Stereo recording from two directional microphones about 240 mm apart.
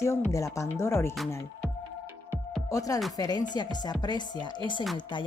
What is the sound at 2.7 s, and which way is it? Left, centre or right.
Speech, centre.